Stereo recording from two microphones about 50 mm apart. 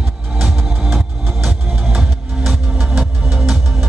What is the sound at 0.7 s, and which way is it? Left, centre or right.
Music, centre.